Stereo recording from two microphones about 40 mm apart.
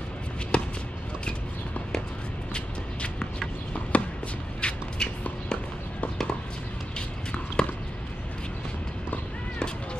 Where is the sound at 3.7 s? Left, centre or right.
Left.